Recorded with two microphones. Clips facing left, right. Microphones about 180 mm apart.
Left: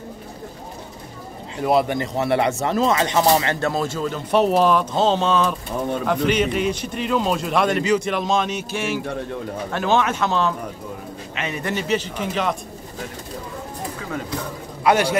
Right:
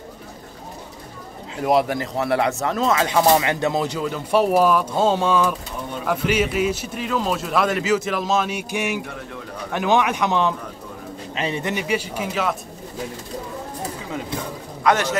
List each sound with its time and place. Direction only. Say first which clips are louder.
1.6 s a man's voice: even; 5° right (ahead or behind)
3.3 s a man's voice: right 1 dB; 20° right (ahead or behind)
11.3 s a man's voice: right 3 dB; 30° right (ahead or behind)
11.6 s speech: left 1 dB; 15° right (ahead or behind)
14.8 s a man's voice: left 2 dB; 10° left (ahead or behind)